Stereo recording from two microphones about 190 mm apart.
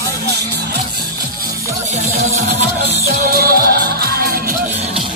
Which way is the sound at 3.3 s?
50° right (ahead or behind).